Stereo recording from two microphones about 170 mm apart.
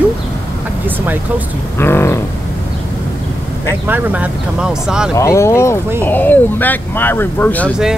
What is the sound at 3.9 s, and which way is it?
Speech, 10° right (ahead or behind).